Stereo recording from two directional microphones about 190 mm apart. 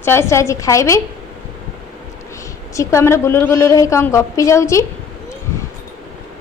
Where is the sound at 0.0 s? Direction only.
15° left (ahead or behind).